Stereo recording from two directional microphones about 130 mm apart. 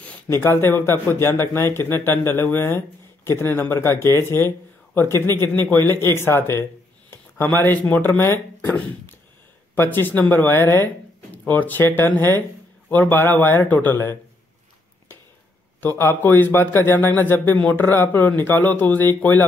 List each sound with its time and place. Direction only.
0.0 s a man's voice: 15° left (ahead or behind)
8.6 s a sound: 15° left (ahead or behind)
9.8 s a man's voice: 15° left (ahead or behind)
15.8 s a man's voice: 15° left (ahead or behind)